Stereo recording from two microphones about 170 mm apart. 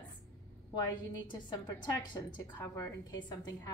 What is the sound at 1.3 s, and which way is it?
A woman's voice, 25° left (ahead or behind).